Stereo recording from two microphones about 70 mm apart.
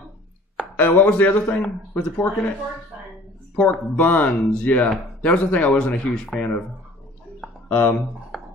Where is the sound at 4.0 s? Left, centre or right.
Left.